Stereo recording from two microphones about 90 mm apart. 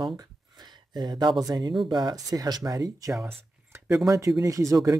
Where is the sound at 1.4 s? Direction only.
50° right (ahead or behind).